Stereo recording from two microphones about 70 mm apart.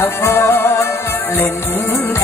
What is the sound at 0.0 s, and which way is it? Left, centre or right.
Music, left.